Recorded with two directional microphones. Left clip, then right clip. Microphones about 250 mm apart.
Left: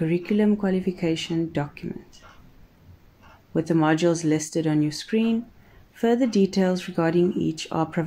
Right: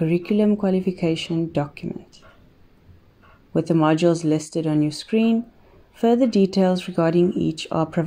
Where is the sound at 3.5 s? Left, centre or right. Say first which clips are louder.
Right 3 dB; centre.